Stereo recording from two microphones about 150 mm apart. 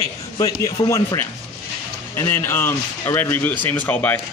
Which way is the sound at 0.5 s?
20° left (ahead or behind).